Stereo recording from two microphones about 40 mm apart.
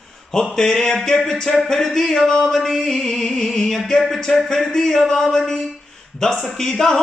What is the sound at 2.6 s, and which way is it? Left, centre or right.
Music, centre.